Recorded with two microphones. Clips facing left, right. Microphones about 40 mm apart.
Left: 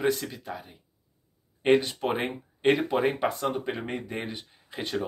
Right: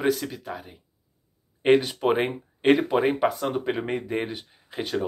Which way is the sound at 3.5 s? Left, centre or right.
Right.